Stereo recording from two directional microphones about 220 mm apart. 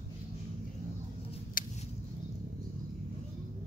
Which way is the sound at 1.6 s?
40° left (ahead or behind).